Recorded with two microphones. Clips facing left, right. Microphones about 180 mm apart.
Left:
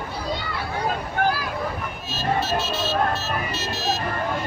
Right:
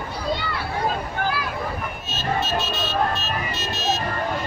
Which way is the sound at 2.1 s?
20° right (ahead or behind).